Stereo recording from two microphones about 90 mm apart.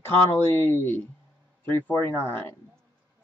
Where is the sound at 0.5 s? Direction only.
25° left (ahead or behind).